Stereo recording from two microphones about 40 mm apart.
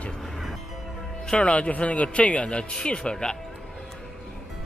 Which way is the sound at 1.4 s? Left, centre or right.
Left.